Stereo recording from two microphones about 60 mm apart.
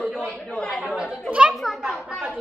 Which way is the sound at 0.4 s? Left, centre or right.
Centre.